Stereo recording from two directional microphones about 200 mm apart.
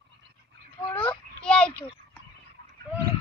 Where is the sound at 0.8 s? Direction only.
10° left (ahead or behind).